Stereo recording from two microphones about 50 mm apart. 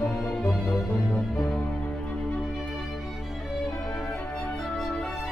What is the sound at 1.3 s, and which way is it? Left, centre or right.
Music, centre.